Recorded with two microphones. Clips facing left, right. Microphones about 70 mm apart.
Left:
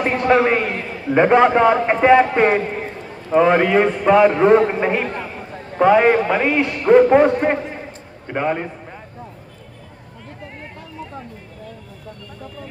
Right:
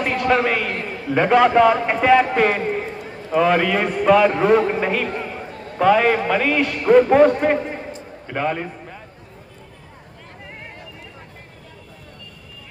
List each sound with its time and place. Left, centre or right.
0.0 s a man's voice: left